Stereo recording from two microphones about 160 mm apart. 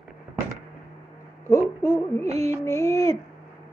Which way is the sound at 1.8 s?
20° left (ahead or behind).